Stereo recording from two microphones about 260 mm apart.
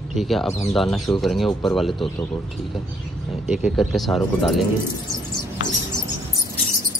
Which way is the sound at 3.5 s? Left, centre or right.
Centre.